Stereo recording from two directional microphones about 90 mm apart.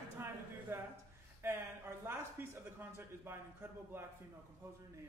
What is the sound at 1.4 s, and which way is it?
Speech, 30° right (ahead or behind).